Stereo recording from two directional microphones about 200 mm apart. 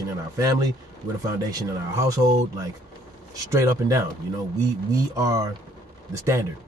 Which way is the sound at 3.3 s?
15° right (ahead or behind).